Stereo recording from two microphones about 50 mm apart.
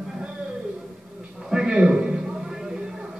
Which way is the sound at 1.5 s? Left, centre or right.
Centre.